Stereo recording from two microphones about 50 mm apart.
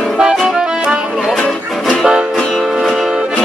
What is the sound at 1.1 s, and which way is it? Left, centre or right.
Music, centre.